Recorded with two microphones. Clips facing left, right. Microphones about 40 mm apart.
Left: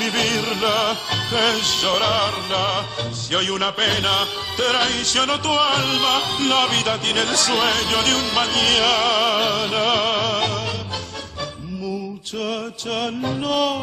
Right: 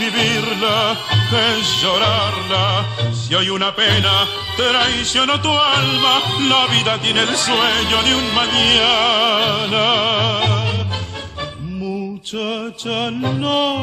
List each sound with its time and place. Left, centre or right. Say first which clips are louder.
0.0 s music: right 3 dB; right
12.9 s music: right 3 dB; right